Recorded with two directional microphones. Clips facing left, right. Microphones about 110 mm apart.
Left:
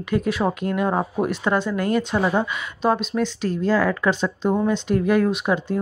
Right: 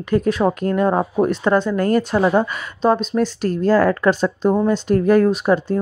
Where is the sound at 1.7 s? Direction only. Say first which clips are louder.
Right 4 dB; 40° right (ahead or behind).